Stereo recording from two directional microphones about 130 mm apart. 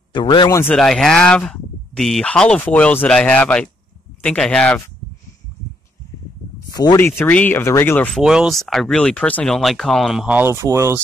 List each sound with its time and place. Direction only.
0.1 s speech: 35° left (ahead or behind)
0.5 s speech: 20° left (ahead or behind)
0.7 s speech: 5° left (ahead or behind)
6.7 s a sound: 30° left (ahead or behind)
7.0 s speech: 15° left (ahead or behind)
8.1 s speech: 5° right (ahead or behind)
10.4 s speech: 20° right (ahead or behind)